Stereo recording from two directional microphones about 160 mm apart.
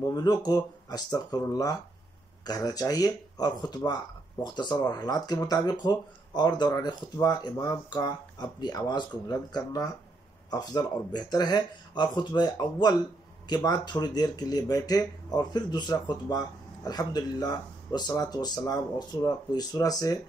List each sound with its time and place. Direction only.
0.1 s speech: 25° left (ahead or behind)